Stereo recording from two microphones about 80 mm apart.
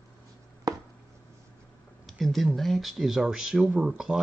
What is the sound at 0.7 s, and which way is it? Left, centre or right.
Chopping, right.